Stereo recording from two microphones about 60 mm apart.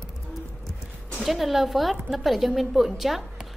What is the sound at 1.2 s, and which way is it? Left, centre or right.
A woman's voice, centre.